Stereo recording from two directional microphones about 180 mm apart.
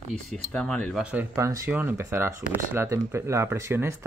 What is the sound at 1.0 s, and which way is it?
Speech, 10° right (ahead or behind).